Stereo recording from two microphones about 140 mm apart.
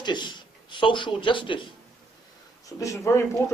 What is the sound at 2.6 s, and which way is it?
Speech, 25° left (ahead or behind).